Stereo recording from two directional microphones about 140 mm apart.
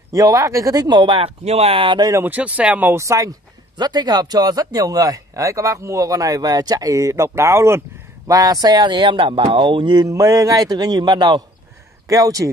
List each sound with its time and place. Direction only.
0.1 s speech: 25° right (ahead or behind)
2.2 s speech: 10° right (ahead or behind)